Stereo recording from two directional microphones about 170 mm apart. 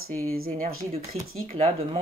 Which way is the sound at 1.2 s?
40° right (ahead or behind).